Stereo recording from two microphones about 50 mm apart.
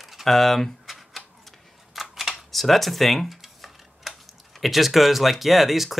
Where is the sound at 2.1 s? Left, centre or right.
Centre.